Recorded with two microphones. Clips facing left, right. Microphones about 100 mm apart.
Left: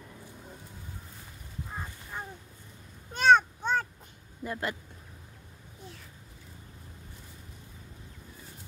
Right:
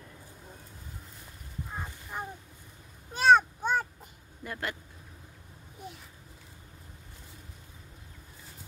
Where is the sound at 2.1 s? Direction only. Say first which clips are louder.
Right 3 dB; 10° right (ahead or behind).